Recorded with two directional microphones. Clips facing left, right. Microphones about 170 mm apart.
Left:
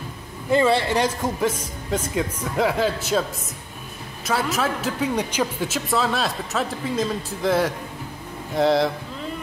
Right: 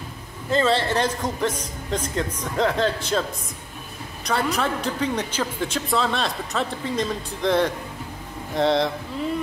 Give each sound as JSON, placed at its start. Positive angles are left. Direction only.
{"t": 0.5, "sound": "speech", "side_deg": 15}
{"t": 4.3, "sound": "a man's voice", "side_deg": 5}